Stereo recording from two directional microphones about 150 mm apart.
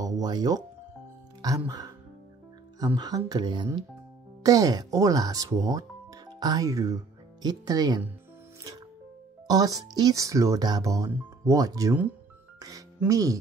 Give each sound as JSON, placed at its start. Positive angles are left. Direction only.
{"t": 0.0, "sound": "speech", "side_deg": -25}
{"t": 1.7, "sound": "speech", "side_deg": -25}
{"t": 9.5, "sound": "speech", "side_deg": -25}
{"t": 12.5, "sound": "music", "side_deg": -25}